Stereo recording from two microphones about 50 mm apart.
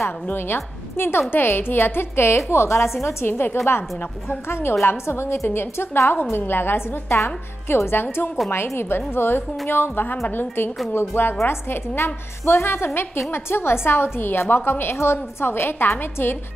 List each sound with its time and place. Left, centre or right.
0.3 s a woman's voice: left
3.3 s a woman's voice: left